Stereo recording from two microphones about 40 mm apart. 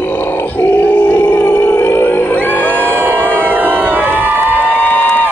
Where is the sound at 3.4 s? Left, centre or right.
Right.